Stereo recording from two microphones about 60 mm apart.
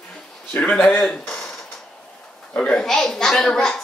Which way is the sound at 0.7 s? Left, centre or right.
Centre.